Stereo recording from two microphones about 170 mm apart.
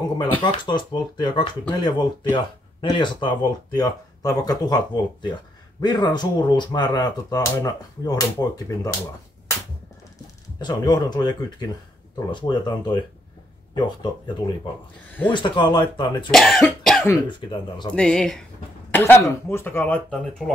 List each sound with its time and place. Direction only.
0.4 s speech: 25° left (ahead or behind)
10.6 s speech: 25° left (ahead or behind)
15.0 s speech: 10° left (ahead or behind)
15.3 s speech: 25° left (ahead or behind)
16.3 s speech: 5° left (ahead or behind)
17.5 s speech: 25° left (ahead or behind)
17.9 s speech: 5° left (ahead or behind)